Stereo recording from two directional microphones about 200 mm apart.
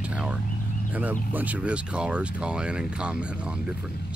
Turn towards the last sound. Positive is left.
turn(degrees=-5)  # may be behind; listen again after turning